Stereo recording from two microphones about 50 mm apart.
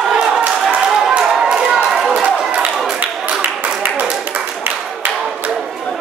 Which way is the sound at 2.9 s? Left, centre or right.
Right.